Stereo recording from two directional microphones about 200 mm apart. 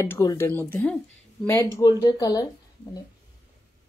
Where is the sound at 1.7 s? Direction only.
15° left (ahead or behind).